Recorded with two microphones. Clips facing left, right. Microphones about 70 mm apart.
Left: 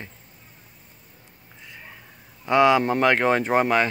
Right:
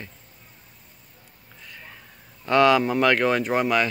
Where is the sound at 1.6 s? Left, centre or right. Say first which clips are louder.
Even; centre.